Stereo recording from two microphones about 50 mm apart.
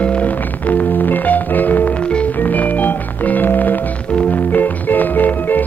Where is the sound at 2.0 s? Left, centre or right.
Left.